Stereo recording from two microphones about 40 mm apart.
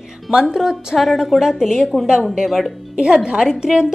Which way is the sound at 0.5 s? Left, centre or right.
Centre.